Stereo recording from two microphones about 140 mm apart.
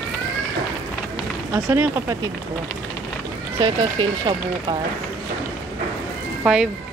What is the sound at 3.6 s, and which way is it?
Speech, 35° right (ahead or behind).